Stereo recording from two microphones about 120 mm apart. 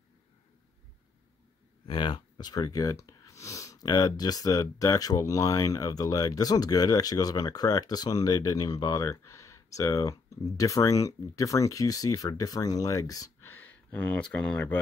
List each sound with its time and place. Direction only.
1.9 s speech: 40° left (ahead or behind); by 14.8 s 10° left (ahead or behind)